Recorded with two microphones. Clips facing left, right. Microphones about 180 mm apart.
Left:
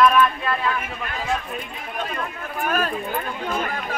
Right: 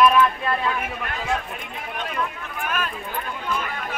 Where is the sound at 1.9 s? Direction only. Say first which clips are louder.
Even; 40° left (ahead or behind).